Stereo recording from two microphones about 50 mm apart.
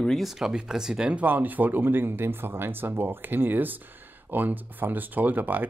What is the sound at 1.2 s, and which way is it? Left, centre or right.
Speech, right.